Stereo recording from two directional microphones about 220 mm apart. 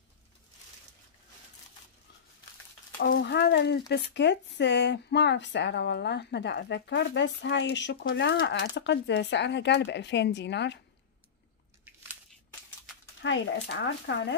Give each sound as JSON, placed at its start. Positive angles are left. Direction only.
{"t": 3.0, "sound": "speech", "side_deg": 50}
{"t": 11.8, "sound": "biting", "side_deg": -5}
{"t": 13.2, "sound": "speech", "side_deg": 55}